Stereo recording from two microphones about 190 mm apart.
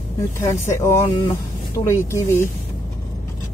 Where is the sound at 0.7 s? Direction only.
15° left (ahead or behind).